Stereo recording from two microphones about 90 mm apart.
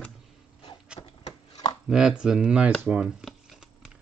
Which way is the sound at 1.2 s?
45° left (ahead or behind).